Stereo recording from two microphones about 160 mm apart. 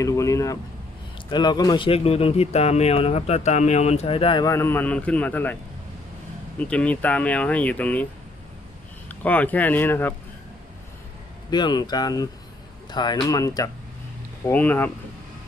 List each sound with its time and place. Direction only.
0.0 s a sound: 20° left (ahead or behind)
1.3 s speech: 25° left (ahead or behind)
4.5 s speech: 15° left (ahead or behind)
6.6 s speech: 10° left (ahead or behind)
9.1 s speech: 10° left (ahead or behind)
11.5 s speech: 25° left (ahead or behind)
14.4 s speech: 10° left (ahead or behind)